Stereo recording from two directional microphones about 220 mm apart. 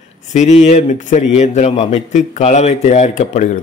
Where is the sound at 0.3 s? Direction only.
30° left (ahead or behind).